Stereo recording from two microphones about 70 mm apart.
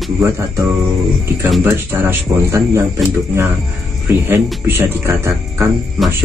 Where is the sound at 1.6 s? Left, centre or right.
Right.